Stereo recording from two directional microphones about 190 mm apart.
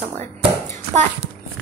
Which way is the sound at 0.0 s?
35° right (ahead or behind).